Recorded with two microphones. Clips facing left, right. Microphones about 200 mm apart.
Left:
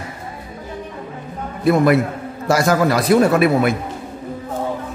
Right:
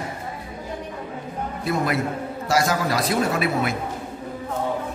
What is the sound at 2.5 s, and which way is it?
A man's voice, 60° left (ahead or behind).